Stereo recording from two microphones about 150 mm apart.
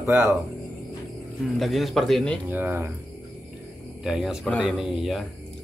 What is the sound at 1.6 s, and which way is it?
Speech, centre (ahead or behind).